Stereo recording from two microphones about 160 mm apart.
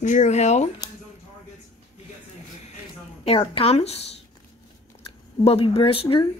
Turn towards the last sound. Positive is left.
turn(degrees=35)  # may be behind; listen again after turning